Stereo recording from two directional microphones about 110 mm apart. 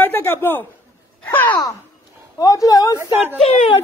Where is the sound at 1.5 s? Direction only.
35° left (ahead or behind).